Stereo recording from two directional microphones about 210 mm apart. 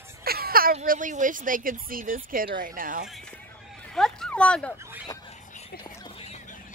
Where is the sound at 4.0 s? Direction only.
5° left (ahead or behind).